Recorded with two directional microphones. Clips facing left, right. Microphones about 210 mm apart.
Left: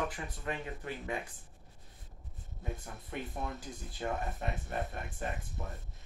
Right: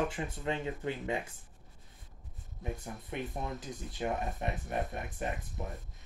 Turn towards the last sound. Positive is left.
turn(degrees=-20)  # may be behind; listen again after turning